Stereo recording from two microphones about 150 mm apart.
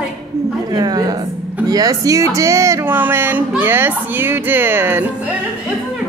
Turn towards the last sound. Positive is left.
turn(degrees=-10)  # may be behind; listen again after turning